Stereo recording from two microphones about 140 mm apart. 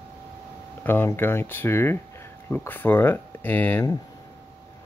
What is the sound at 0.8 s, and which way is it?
Speech, 15° left (ahead or behind).